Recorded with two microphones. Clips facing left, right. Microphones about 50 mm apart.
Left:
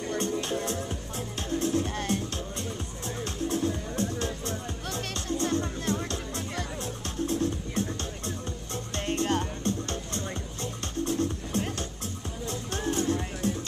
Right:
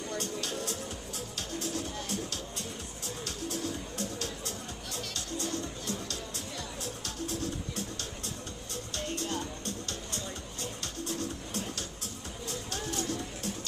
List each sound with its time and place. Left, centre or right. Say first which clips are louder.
0.1 s music: left 7 dB; left
3.4 s music: left 8 dB; left